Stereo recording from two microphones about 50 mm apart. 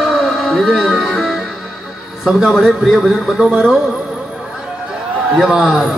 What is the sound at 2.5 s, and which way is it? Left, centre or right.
A man's voice, centre.